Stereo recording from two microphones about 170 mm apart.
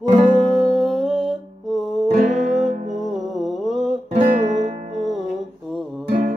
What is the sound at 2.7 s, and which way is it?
Music, 45° right (ahead or behind).